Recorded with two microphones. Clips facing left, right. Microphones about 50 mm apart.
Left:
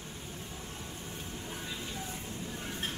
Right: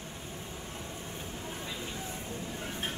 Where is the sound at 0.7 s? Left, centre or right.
Centre.